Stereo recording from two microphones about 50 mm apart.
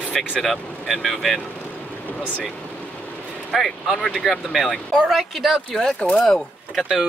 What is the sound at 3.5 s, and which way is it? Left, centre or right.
Speech, centre.